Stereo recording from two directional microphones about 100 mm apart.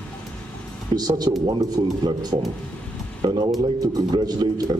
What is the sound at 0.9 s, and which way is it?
Speech, 40° right (ahead or behind).